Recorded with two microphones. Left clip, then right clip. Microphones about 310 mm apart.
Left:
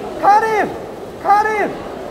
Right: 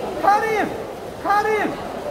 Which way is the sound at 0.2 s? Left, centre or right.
Centre.